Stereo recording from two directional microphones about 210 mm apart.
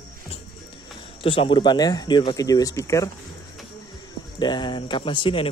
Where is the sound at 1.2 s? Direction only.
25° left (ahead or behind).